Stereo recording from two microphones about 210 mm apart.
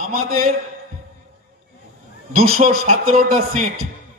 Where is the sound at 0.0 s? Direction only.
40° right (ahead or behind).